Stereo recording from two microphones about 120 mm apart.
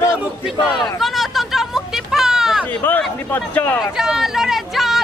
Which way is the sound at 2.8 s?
15° left (ahead or behind).